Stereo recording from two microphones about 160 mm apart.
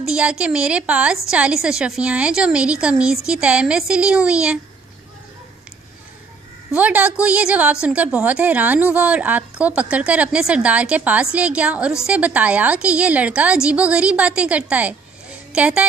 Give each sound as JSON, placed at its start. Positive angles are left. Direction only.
{"t": 0.0, "sound": "a woman's voice", "side_deg": -5}
{"t": 6.7, "sound": "a woman's voice", "side_deg": -10}